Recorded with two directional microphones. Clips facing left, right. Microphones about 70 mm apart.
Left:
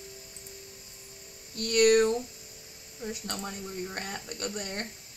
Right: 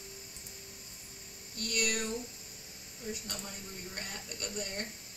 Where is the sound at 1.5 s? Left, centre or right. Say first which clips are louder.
Left 13 dB; left.